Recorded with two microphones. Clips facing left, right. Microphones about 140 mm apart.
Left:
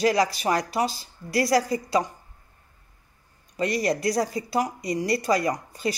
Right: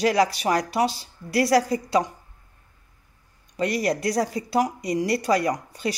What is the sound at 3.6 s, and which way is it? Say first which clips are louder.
A woman's voice: right 1 dB; 5° right (ahead or behind).